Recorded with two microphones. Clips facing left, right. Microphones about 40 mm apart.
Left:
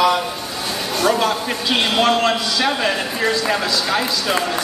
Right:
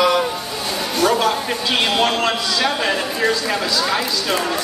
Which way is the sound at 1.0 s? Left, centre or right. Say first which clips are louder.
Right 1 dB; centre.